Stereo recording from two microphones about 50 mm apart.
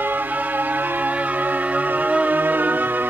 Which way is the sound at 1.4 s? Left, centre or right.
Right.